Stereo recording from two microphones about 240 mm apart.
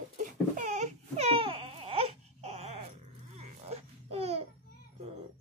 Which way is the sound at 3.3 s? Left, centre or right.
Right.